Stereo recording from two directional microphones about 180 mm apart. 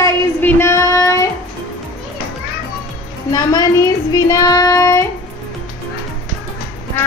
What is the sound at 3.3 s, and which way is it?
Child singing, 20° left (ahead or behind).